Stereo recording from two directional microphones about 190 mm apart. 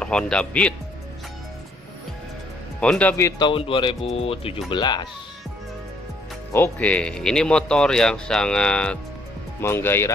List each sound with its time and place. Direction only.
0.0 s speech: 5° left (ahead or behind)
2.8 s speech: 5° left (ahead or behind); by 5.0 s 25° left (ahead or behind)
6.5 s speech: 10° left (ahead or behind)